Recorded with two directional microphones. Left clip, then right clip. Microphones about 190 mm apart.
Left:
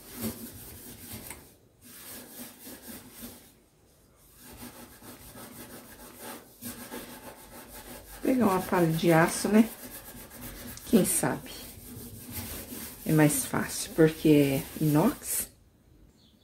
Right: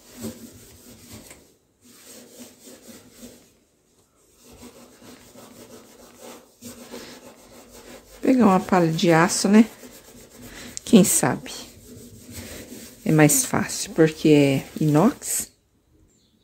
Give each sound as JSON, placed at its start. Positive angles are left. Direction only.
{"t": 8.3, "sound": "speech", "side_deg": -70}
{"t": 10.9, "sound": "speech", "side_deg": -50}
{"t": 13.0, "sound": "speech", "side_deg": -60}